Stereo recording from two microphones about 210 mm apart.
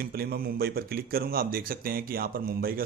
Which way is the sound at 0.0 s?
45° right (ahead or behind).